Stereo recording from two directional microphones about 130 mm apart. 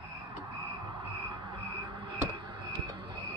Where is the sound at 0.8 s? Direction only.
35° right (ahead or behind).